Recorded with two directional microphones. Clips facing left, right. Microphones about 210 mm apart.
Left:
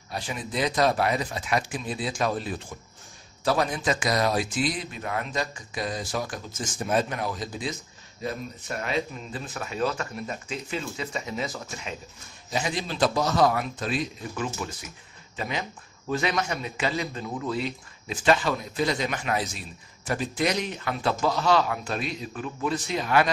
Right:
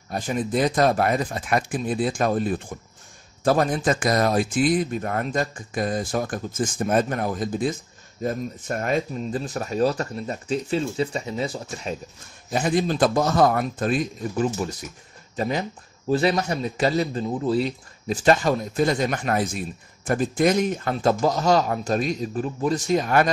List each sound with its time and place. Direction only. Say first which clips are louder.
0.1 s speech: right 8 dB; 50° right (ahead or behind); by 11.9 s 30° right (ahead or behind)
12.4 s speech: right 7 dB; 50° right (ahead or behind)